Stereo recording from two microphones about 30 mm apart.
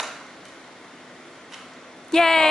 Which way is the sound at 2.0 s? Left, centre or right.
Centre.